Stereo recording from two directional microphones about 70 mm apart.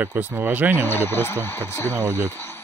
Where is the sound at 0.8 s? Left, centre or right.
Left.